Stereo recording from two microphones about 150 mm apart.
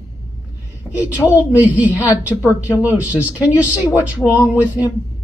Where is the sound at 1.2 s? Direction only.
10° right (ahead or behind).